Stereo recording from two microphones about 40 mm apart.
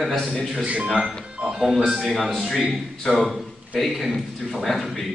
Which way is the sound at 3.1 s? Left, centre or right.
Centre.